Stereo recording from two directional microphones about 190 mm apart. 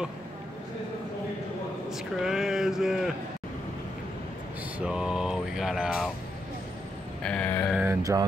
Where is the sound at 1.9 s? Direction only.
Centre (ahead or behind).